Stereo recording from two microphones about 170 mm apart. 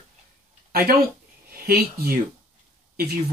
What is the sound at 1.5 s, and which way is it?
Speech, 60° right (ahead or behind).